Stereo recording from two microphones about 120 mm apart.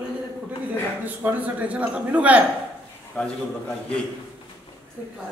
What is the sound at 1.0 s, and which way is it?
A man's voice, 15° right (ahead or behind).